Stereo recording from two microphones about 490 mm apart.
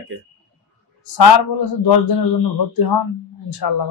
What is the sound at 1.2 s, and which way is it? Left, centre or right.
Speech, left.